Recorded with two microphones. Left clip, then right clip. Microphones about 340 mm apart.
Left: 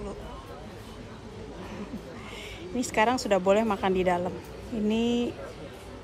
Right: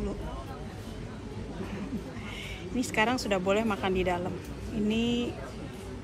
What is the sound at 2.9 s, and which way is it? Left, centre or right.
A woman's voice, centre.